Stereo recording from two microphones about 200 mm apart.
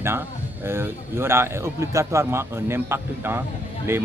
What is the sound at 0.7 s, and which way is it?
A man's voice, 10° right (ahead or behind).